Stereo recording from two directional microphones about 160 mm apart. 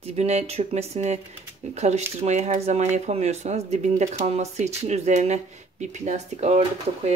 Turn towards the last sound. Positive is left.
turn(degrees=-40)  # may be behind; listen again after turning